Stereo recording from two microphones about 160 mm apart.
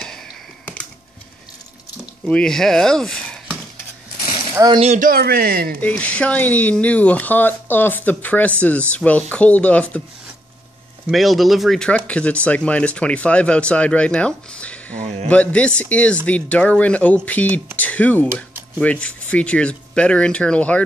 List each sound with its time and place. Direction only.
2.2 s speech: 5° left (ahead or behind)
4.7 s speech: 40° right (ahead or behind)
5.0 s speech: 70° right (ahead or behind)
5.8 s speech: 10° left (ahead or behind)
11.1 s speech: centre (ahead or behind)